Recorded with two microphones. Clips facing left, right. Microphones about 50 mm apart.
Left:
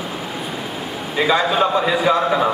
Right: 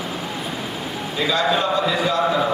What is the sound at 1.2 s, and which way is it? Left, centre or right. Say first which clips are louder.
A man's voice: left 4 dB; left.